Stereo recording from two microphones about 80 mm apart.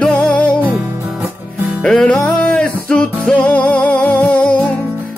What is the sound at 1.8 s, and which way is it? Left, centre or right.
Music, centre.